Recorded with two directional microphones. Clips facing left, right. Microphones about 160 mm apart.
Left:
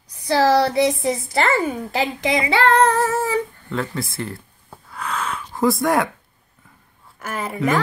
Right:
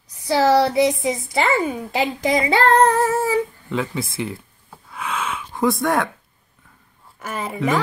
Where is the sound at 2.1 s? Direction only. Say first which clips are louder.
Right 2 dB; 40° right (ahead or behind).